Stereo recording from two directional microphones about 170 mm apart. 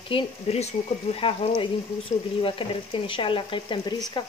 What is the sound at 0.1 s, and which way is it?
Speech, 40° left (ahead or behind).